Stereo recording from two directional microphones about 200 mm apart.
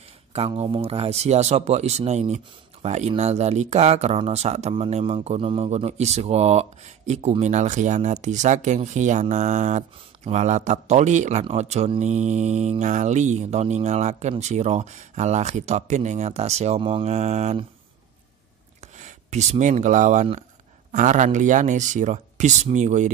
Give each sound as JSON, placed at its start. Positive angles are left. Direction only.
{"t": 0.6, "sound": "speech", "side_deg": -30}
{"t": 18.8, "sound": "speech", "side_deg": -35}